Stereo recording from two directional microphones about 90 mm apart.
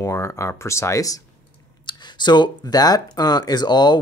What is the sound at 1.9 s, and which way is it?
Speech, 55° left (ahead or behind).